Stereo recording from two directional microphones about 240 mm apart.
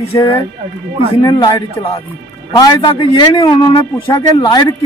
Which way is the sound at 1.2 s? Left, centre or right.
Centre.